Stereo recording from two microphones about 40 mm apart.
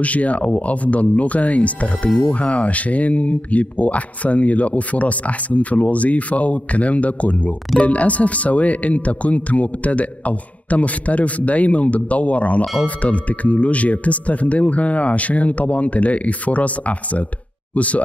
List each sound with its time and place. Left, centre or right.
0.0 s speech: left